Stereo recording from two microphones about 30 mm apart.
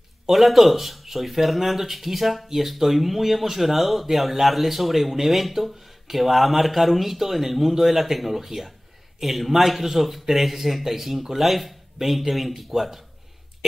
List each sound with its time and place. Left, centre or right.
0.3 s speech: centre